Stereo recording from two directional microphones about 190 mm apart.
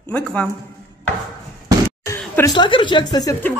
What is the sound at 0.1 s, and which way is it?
Speech, 5° left (ahead or behind).